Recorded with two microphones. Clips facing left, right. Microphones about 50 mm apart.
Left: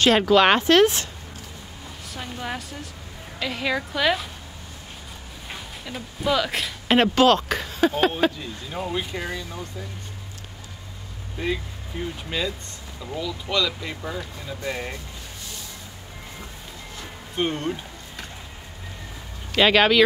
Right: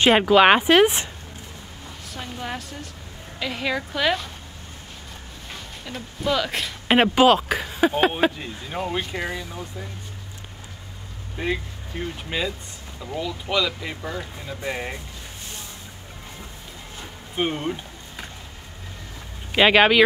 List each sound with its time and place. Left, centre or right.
0.0 s speech: centre
2.1 s a woman's voice: centre
5.5 s speech: centre
6.9 s speech: centre
8.1 s speech: right
11.4 s speech: right
17.0 s music: centre
19.5 s speech: centre